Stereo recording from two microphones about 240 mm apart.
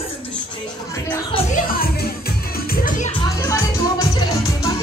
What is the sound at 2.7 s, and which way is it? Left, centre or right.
Music, left.